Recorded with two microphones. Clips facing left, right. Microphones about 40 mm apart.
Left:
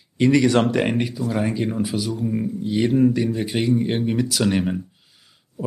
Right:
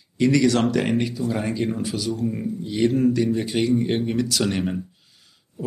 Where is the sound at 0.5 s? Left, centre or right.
Left.